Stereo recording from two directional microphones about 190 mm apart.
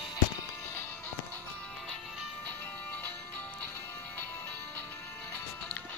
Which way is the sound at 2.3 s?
10° left (ahead or behind).